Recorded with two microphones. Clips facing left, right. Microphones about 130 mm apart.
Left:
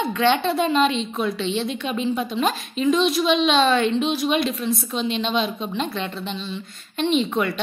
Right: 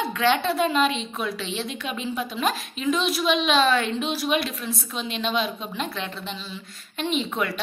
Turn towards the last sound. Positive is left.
turn(degrees=0)  # may be behind; listen again after turning